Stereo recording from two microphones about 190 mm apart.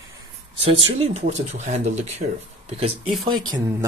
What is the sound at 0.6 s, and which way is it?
Speech, 30° right (ahead or behind).